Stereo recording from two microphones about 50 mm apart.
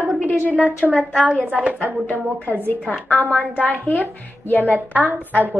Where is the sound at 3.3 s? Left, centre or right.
Left.